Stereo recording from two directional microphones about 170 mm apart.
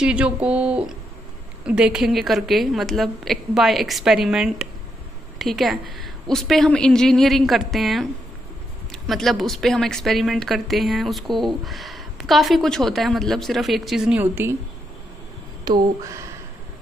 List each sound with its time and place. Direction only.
0.0 s a woman's voice: 5° right (ahead or behind)
15.6 s speech: 20° right (ahead or behind)